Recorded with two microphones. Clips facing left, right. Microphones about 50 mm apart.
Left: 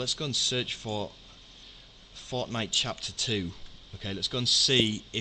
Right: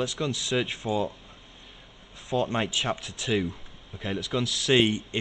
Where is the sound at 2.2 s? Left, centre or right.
Right.